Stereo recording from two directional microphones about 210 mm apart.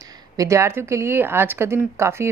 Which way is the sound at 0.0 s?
15° right (ahead or behind).